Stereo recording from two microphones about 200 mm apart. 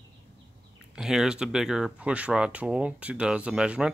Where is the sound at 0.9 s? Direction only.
Centre (ahead or behind).